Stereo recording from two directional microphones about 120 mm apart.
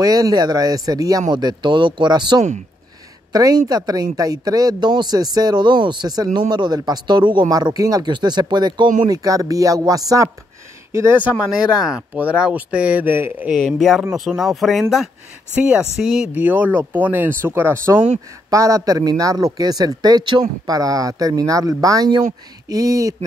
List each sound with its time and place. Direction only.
0.0 s speech: 30° right (ahead or behind)
11.8 s speech: 10° right (ahead or behind)
13.5 s speech: centre (ahead or behind)
16.3 s a man's voice: 15° right (ahead or behind); by 23.1 s 30° right (ahead or behind)